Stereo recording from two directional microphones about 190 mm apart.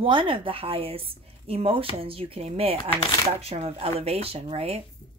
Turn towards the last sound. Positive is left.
turn(degrees=-30)  # may be behind; listen again after turning